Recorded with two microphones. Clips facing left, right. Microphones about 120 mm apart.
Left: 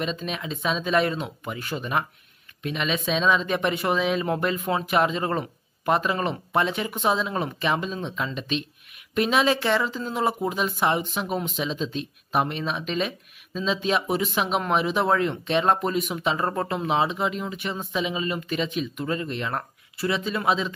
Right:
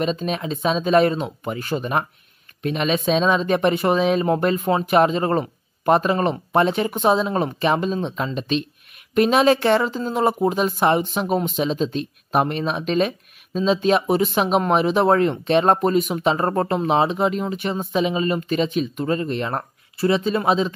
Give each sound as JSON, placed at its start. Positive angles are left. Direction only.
{"t": 0.0, "sound": "speech", "side_deg": -30}